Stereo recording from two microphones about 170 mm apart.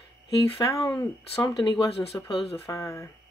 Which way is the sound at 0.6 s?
20° left (ahead or behind).